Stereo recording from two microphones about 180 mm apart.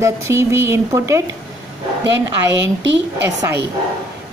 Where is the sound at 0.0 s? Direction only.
15° right (ahead or behind).